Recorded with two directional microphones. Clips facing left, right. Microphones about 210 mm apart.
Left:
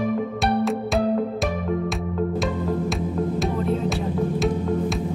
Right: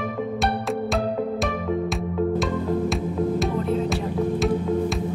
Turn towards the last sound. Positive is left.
turn(degrees=0)  # may be behind; listen again after turning